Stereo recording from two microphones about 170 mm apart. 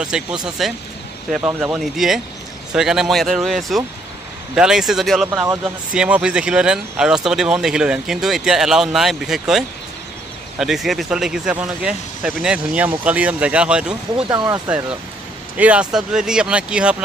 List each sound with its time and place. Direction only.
0.0 s speech: 5° right (ahead or behind)
1.4 s speech: 10° right (ahead or behind)
14.3 s speech: 20° right (ahead or behind)